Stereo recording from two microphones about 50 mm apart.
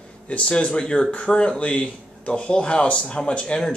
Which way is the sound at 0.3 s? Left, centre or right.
Left.